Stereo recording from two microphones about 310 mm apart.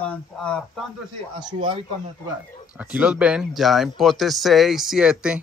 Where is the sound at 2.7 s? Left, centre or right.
Centre.